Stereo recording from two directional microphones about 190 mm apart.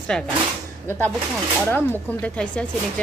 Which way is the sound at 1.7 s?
10° left (ahead or behind).